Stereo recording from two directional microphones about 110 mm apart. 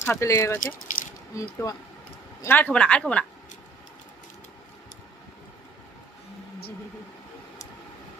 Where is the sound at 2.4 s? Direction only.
15° left (ahead or behind).